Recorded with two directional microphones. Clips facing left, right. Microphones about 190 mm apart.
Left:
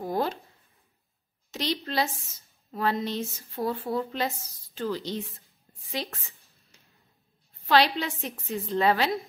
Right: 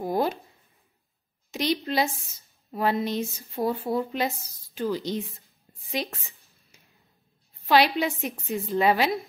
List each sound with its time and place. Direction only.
0.0 s speech: 15° right (ahead or behind)
1.5 s speech: 15° right (ahead or behind)
6.7 s a sound: 10° right (ahead or behind)
7.6 s speech: 10° right (ahead or behind)